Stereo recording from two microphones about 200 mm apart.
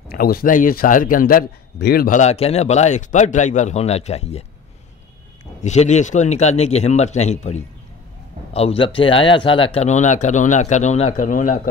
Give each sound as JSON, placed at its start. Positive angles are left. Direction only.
{"t": 0.1, "sound": "a man's voice", "side_deg": 50}
{"t": 5.6, "sound": "a man's voice", "side_deg": 35}